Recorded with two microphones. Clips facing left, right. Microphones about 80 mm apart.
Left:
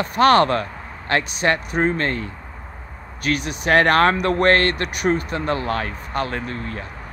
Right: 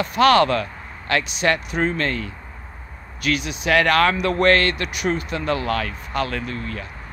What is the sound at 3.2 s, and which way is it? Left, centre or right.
Speech, left.